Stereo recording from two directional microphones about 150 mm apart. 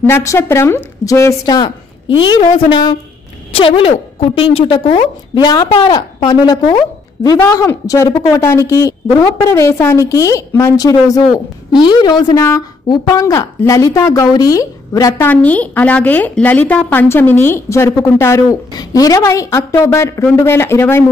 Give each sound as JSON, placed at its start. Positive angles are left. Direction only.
{"t": 0.0, "sound": "a woman's voice", "side_deg": 20}